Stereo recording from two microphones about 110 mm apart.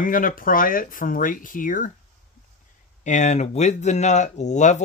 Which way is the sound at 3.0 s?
90° left.